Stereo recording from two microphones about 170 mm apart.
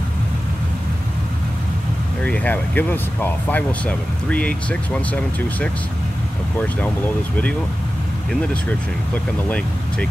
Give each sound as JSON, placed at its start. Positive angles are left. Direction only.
{"t": 2.2, "sound": "speech", "side_deg": 10}
{"t": 8.3, "sound": "speech", "side_deg": 10}